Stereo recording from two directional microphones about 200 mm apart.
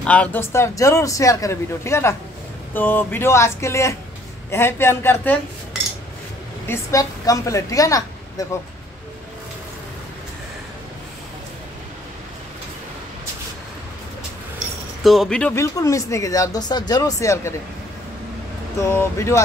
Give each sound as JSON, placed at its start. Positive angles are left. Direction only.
{"t": 0.0, "sound": "speech", "side_deg": 5}
{"t": 6.7, "sound": "a woman's voice", "side_deg": 15}
{"t": 15.0, "sound": "speech", "side_deg": 0}
{"t": 18.9, "sound": "speech", "side_deg": 15}